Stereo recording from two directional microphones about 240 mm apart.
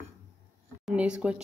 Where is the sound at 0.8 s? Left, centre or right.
Centre.